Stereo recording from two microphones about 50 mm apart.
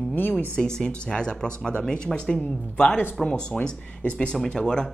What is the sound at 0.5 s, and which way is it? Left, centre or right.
Speech, centre.